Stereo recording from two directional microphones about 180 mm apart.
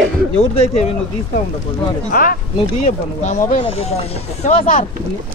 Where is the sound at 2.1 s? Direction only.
50° left (ahead or behind).